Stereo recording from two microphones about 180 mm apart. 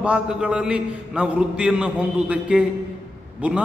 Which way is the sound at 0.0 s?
5° right (ahead or behind).